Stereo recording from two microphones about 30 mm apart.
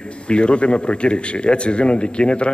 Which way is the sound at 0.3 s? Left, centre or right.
Left.